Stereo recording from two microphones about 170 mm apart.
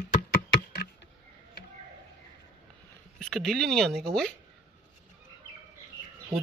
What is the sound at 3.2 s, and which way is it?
Speech, centre (ahead or behind).